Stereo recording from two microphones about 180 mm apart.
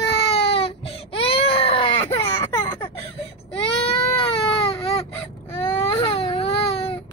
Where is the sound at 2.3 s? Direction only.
25° left (ahead or behind).